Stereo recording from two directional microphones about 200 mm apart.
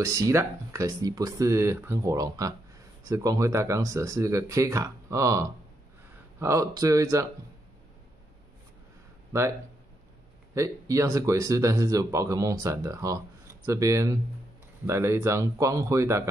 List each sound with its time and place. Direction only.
0.0 s speech: 15° right (ahead or behind)
10.5 s speech: 15° right (ahead or behind)